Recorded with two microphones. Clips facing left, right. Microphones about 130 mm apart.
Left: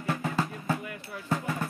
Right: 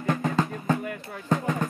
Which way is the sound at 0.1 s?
50° right (ahead or behind).